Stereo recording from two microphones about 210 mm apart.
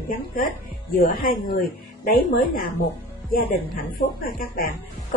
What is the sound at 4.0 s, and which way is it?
Speech, 40° left (ahead or behind).